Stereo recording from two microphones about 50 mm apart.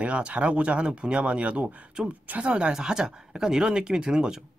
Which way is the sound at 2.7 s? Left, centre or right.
Centre.